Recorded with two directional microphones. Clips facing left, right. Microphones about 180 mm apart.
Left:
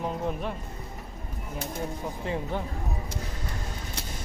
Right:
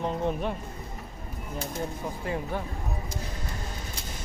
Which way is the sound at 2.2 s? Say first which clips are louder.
Even; 25° left (ahead or behind).